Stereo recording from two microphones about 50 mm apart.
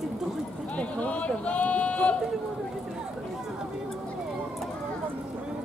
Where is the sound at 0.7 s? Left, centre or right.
Left.